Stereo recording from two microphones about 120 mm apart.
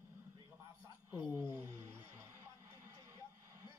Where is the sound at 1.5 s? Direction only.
30° right (ahead or behind).